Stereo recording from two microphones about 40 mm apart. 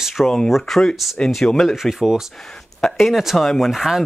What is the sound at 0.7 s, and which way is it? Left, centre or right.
Speech, centre.